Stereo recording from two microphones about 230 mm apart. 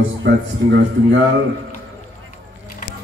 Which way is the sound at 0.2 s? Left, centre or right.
Right.